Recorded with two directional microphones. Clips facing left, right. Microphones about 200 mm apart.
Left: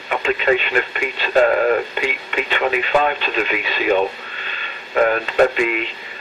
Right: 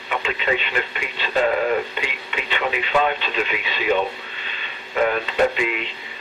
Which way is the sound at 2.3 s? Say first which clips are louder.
Left 4 dB; 50° left (ahead or behind).